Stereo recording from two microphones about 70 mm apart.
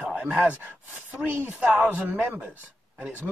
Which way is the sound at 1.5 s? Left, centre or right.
Centre.